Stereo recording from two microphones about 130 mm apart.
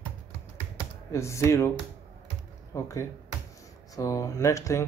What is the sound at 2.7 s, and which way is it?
Speech, 25° left (ahead or behind).